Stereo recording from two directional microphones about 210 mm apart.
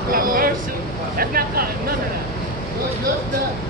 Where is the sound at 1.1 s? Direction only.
45° right (ahead or behind).